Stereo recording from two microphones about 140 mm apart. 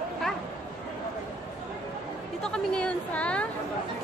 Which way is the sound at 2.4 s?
5° left (ahead or behind).